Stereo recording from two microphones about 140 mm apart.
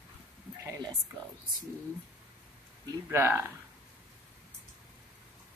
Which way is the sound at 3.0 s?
15° right (ahead or behind).